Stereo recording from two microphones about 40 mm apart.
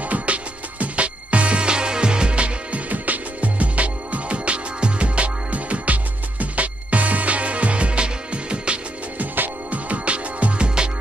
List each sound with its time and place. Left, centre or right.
0.1 s music: right
2.9 s music: right
9.2 s music: right
9.7 s music: right